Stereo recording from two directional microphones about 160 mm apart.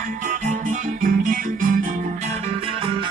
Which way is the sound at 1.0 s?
55° right (ahead or behind).